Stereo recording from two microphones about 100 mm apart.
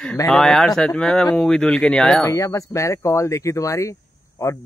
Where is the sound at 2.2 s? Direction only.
30° left (ahead or behind).